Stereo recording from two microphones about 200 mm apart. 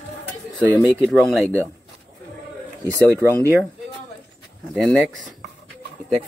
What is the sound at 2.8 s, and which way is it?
Speech, 15° right (ahead or behind).